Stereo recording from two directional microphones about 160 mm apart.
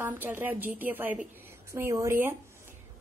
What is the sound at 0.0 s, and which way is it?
A woman's voice, 10° right (ahead or behind).